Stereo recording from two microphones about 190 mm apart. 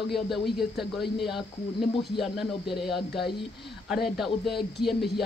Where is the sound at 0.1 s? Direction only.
Centre (ahead or behind).